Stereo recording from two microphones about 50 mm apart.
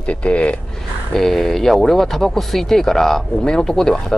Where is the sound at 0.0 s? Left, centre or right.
Left.